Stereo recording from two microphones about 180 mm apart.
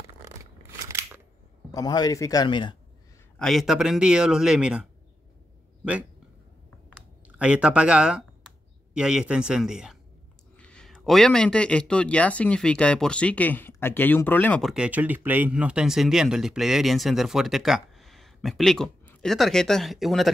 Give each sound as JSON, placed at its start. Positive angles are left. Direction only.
{"t": 0.8, "sound": "scissors", "side_deg": -15}
{"t": 1.7, "sound": "speech", "side_deg": 20}
{"t": 3.3, "sound": "a man's voice", "side_deg": 0}
{"t": 7.2, "sound": "a man's voice", "side_deg": -5}